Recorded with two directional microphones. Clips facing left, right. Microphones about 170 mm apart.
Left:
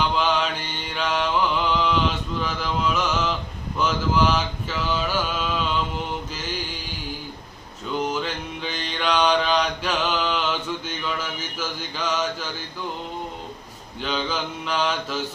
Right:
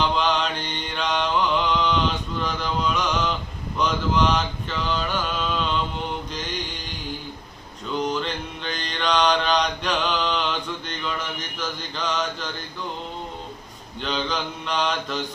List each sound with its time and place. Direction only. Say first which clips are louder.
0.1 s mantra: even; 5° left (ahead or behind)
8.0 s mantra: right 1 dB; 5° left (ahead or behind)
14.0 s mantra: even; 5° left (ahead or behind)